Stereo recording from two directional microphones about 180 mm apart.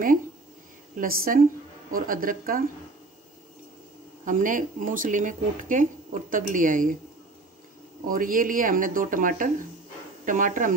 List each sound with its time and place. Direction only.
0.9 s speech: 55° right (ahead or behind)
4.2 s speech: 45° right (ahead or behind)
8.1 s speech: 50° right (ahead or behind)